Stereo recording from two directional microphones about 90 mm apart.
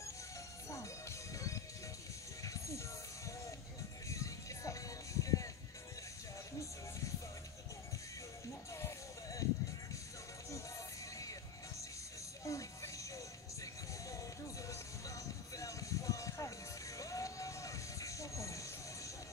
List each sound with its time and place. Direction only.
1.3 s music: 40° left (ahead or behind)
8.7 s music: 35° left (ahead or behind)
12.4 s music: 35° left (ahead or behind)